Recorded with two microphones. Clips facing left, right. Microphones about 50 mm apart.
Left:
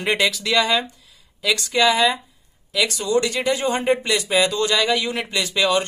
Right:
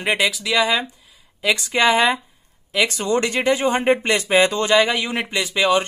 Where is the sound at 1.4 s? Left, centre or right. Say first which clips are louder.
Right 1 dB; right.